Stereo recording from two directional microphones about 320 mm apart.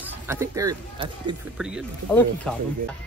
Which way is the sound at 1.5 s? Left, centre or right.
Centre.